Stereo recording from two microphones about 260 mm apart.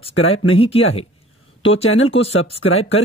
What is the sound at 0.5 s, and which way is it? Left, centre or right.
Speech, left.